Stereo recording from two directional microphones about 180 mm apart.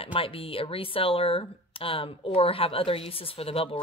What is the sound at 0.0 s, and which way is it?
Speech, 30° left (ahead or behind).